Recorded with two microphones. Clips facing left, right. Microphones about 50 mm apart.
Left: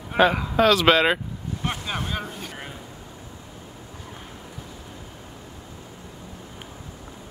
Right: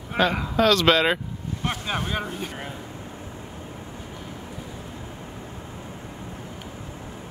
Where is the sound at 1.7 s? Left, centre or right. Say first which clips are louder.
Right 2 dB; centre.